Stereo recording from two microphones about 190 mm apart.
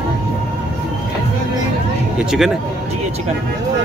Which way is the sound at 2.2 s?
Centre (ahead or behind).